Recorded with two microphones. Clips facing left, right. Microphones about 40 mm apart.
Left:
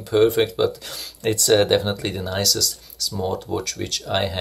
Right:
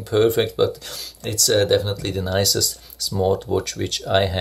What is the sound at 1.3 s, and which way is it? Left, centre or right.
Speech, left.